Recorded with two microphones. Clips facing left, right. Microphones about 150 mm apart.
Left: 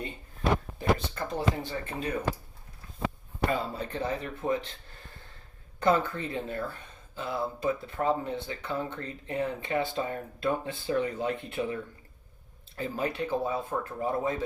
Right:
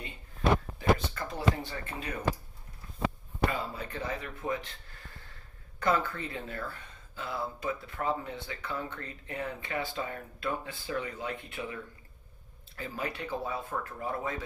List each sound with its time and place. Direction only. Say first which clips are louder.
0.7 s speech: even; 30° left (ahead or behind)
3.7 s speech: left 4 dB; 30° left (ahead or behind)
5.8 s speech: left 4 dB; 25° left (ahead or behind)